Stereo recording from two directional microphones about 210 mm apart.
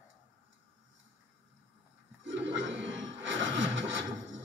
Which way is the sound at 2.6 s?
60° right (ahead or behind).